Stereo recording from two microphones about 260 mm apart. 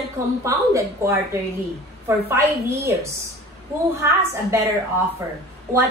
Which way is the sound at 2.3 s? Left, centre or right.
Centre.